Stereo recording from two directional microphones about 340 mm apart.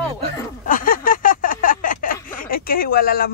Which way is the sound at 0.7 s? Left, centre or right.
Left.